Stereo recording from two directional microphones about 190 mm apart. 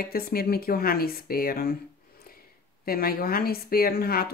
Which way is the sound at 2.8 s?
50° left (ahead or behind).